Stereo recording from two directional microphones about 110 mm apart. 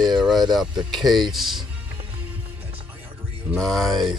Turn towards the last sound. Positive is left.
turn(degrees=-5)  # may be behind; listen again after turning